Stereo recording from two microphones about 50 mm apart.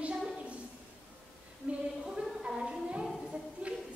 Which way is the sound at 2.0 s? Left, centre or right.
Centre.